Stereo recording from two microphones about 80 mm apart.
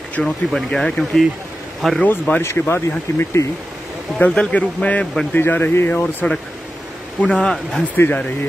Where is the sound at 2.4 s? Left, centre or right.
Left.